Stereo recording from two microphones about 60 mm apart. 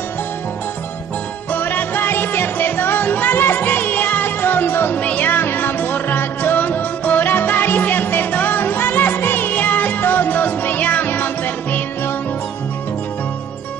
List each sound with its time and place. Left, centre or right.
1.5 s music: left